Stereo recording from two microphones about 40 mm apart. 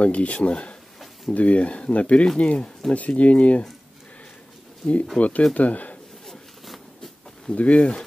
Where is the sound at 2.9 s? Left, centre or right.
Left.